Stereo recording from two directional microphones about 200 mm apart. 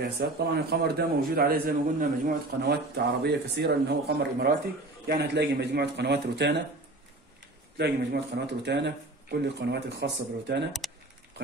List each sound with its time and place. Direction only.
0.2 s a man's voice: 50° right (ahead or behind)
7.7 s a man's voice: 55° right (ahead or behind)